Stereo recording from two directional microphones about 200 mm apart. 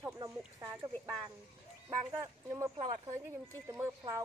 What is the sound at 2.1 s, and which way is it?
Speech, 15° right (ahead or behind).